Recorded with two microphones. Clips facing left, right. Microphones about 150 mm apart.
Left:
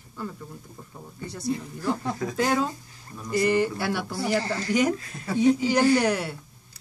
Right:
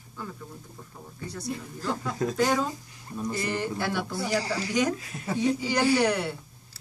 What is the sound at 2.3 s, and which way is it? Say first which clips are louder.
Speech: left 2 dB; 5° left (ahead or behind).